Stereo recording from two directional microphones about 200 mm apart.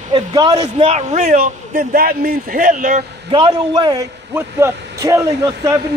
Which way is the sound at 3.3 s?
25° right (ahead or behind).